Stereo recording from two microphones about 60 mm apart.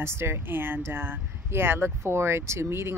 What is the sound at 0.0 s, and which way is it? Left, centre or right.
Speech, right.